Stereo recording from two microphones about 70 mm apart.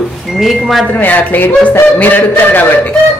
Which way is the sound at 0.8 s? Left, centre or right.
Left.